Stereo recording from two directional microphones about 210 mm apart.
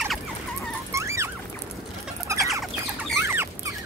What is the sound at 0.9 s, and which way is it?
Dog, 15° right (ahead or behind).